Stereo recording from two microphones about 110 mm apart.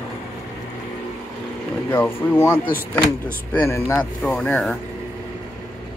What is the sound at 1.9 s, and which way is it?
Speech, 20° left (ahead or behind).